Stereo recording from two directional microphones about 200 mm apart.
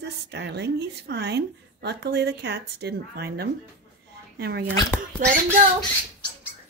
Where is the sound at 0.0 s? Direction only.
60° right (ahead or behind).